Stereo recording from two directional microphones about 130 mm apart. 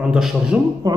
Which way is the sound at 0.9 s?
30° right (ahead or behind).